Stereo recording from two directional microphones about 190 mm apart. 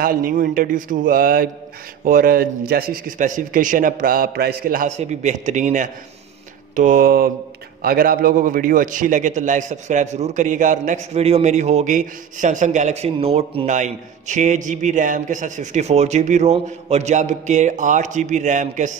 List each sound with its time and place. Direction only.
0.0 s a man's voice: 50° right (ahead or behind)